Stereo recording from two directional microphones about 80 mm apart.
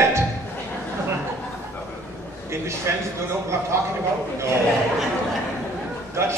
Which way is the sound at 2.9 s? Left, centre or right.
Right.